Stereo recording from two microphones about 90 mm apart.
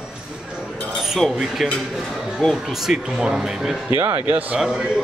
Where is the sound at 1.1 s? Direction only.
Centre (ahead or behind).